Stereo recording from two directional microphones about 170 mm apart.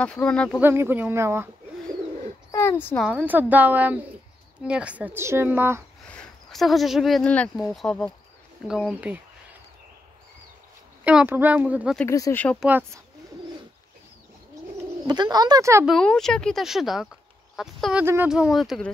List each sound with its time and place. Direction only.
0.0 s speech: 5° left (ahead or behind)
0.6 s speech: 15° right (ahead or behind)
2.5 s speech: 15° left (ahead or behind)
3.0 s speech: 10° right (ahead or behind)
6.0 s speech: 5° left (ahead or behind)
11.1 s speech: 10° right (ahead or behind)
12.1 s speech: 15° left (ahead or behind)
12.5 s speech: 10° right (ahead or behind)
15.0 s speech: 25° right (ahead or behind)
15.8 s speech: centre (ahead or behind)
18.0 s speech: 15° right (ahead or behind)
18.3 s speech: centre (ahead or behind)